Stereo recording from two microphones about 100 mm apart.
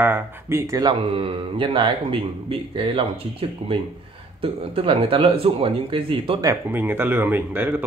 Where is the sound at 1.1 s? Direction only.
60° right (ahead or behind).